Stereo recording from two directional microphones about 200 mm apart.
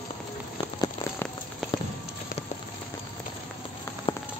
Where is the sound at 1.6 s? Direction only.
Centre (ahead or behind).